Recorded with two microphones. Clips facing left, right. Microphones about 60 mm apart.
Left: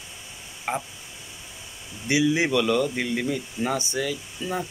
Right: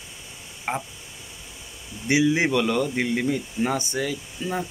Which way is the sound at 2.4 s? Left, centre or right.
Right.